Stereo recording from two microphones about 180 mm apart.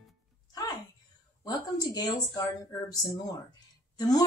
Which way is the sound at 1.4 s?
20° left (ahead or behind).